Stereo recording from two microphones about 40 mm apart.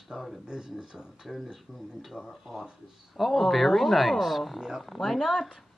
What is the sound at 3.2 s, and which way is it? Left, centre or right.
Speech, centre.